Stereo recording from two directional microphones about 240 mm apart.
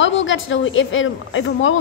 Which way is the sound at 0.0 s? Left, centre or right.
Left.